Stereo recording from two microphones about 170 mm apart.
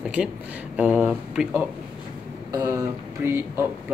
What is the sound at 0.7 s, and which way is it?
Speech, 10° right (ahead or behind).